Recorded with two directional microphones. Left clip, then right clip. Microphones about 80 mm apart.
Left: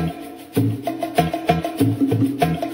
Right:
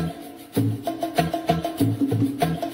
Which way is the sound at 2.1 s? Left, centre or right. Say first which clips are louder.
Left 4 dB; left.